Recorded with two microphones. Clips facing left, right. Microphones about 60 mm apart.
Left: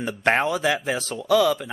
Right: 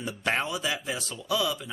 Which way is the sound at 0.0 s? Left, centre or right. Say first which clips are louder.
Left 8 dB; left.